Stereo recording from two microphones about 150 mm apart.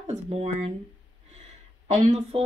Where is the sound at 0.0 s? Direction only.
45° right (ahead or behind).